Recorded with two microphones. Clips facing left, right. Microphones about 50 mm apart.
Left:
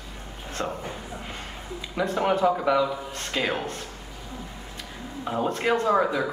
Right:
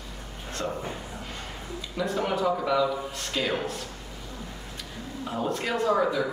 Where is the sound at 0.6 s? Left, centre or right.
Centre.